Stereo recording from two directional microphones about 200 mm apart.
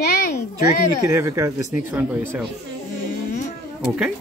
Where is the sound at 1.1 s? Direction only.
15° right (ahead or behind).